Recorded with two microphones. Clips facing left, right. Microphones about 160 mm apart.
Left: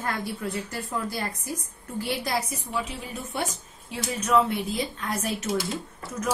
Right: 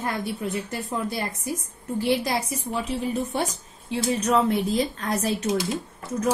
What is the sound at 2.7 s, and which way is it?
A woman's voice, 40° right (ahead or behind).